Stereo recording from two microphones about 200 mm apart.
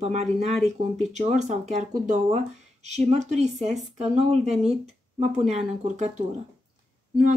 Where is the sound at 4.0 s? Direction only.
30° right (ahead or behind).